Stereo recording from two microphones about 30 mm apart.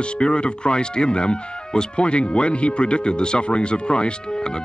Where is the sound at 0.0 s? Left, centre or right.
Left.